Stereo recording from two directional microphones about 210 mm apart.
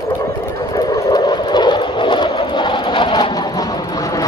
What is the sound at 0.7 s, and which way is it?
Train, 15° left (ahead or behind).